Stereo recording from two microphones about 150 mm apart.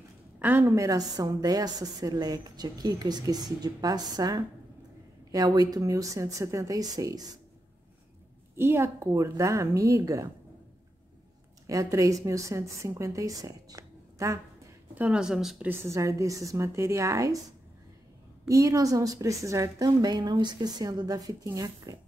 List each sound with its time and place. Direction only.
0.4 s a woman's voice: 10° right (ahead or behind)
8.5 s a woman's voice: 15° right (ahead or behind)
11.6 s a woman's voice: 20° right (ahead or behind)
15.0 s a woman's voice: 5° right (ahead or behind)
18.5 s a woman's voice: 20° right (ahead or behind)